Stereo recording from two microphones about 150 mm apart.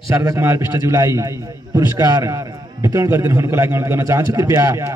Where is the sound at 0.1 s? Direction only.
15° right (ahead or behind).